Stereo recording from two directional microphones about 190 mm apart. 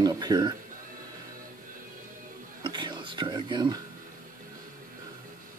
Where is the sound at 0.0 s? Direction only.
20° right (ahead or behind).